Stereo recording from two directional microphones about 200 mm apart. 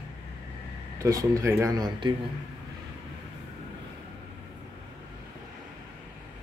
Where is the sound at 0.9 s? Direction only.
15° right (ahead or behind).